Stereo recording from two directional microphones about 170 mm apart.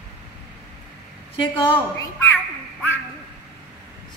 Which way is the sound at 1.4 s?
30° left (ahead or behind).